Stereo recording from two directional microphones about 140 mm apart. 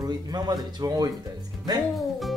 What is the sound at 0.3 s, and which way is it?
Speech, 30° right (ahead or behind).